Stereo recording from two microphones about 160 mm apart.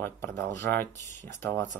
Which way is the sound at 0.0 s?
15° left (ahead or behind).